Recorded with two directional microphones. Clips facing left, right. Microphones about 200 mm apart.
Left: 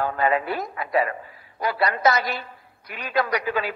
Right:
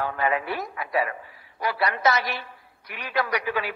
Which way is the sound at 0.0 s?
40° left (ahead or behind).